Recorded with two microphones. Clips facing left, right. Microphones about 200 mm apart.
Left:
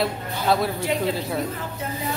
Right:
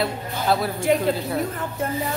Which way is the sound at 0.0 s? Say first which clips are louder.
Even; centre (ahead or behind).